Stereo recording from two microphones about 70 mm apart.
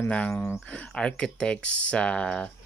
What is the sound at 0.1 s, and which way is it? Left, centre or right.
Speech, centre.